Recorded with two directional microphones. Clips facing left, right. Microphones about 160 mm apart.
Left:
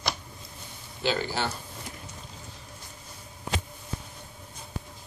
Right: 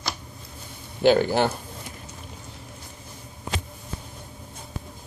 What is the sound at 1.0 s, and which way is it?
Speech, 55° right (ahead or behind).